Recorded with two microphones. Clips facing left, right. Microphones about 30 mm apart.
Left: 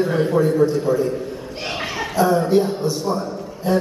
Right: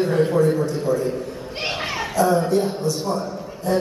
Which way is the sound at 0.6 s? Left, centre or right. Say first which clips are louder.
Left 4 dB; centre.